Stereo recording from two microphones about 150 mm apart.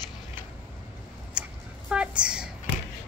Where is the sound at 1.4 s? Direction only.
5° right (ahead or behind).